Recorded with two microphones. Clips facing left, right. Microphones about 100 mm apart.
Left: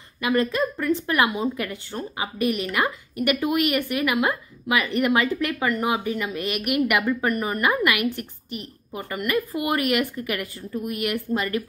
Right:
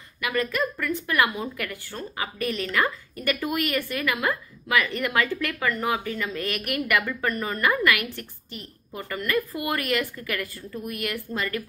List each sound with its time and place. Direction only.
0.2 s speech: 20° left (ahead or behind)